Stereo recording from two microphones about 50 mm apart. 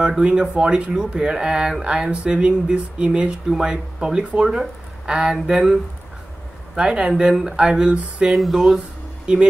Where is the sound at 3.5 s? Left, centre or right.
Centre.